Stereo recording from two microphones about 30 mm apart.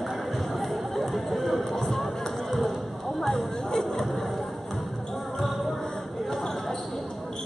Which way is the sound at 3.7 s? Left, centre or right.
Left.